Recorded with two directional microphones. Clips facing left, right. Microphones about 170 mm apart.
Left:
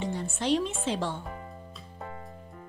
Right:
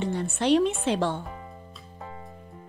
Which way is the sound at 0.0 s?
65° right (ahead or behind).